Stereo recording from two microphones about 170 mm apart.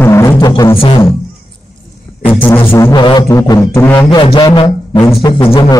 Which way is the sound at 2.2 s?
10° left (ahead or behind).